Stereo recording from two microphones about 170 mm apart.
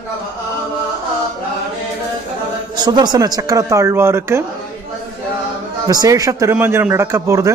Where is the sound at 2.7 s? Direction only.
25° right (ahead or behind).